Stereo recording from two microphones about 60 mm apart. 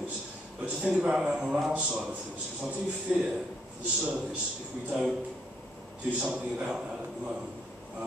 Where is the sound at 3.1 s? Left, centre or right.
Centre.